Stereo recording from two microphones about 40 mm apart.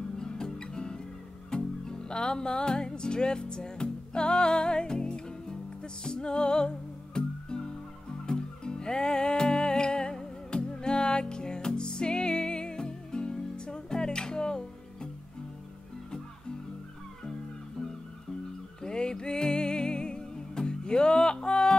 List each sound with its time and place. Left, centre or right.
0.2 s music: centre
18.8 s music: centre